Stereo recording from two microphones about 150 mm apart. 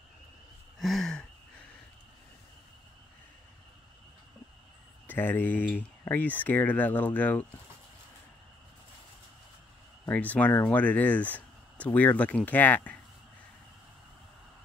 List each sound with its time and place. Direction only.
0.7 s a sound: centre (ahead or behind)
5.0 s speech: 15° left (ahead or behind)
10.0 s speech: 10° left (ahead or behind)